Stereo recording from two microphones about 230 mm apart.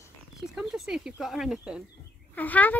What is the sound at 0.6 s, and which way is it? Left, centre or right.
A child's voice, centre.